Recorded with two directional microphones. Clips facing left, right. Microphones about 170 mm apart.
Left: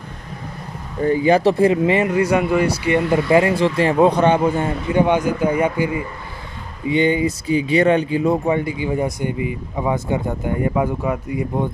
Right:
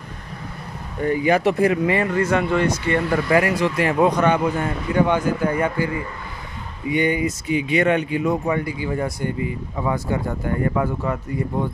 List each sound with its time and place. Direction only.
1.0 s speech: 30° left (ahead or behind); by 11.7 s 10° left (ahead or behind)